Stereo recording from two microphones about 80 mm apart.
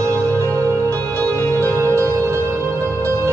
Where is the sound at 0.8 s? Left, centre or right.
Right.